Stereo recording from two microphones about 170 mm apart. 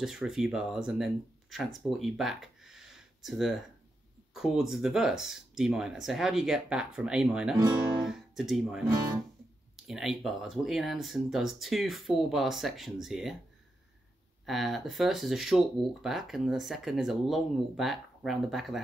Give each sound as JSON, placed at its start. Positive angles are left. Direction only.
{"t": 0.0, "sound": "speech", "side_deg": 0}
{"t": 7.5, "sound": "speech", "side_deg": -25}
{"t": 8.0, "sound": "speech", "side_deg": -5}
{"t": 14.4, "sound": "speech", "side_deg": 0}